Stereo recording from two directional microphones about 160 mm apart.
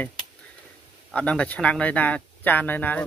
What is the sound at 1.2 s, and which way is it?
Speech, 10° left (ahead or behind).